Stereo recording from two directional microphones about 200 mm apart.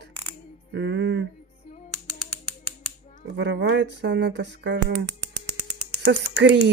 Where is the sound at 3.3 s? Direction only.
60° right (ahead or behind).